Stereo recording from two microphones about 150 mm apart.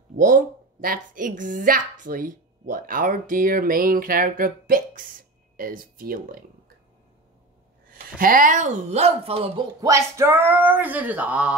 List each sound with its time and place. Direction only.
0.2 s speech: 70° right (ahead or behind)
8.2 s speech: 65° right (ahead or behind); by 9.7 s 40° right (ahead or behind)
9.8 s a sound: 20° right (ahead or behind)